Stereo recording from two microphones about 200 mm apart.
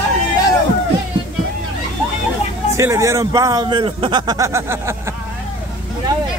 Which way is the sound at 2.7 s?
15° right (ahead or behind).